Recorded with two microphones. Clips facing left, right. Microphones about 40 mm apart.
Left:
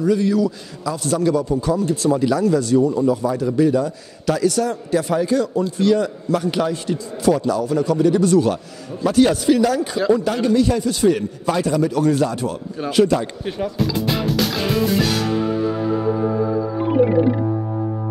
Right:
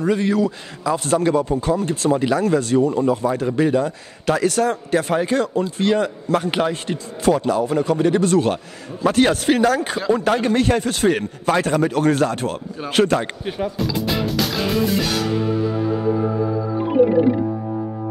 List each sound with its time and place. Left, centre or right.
0.0 s a man's voice: right
13.5 s music: centre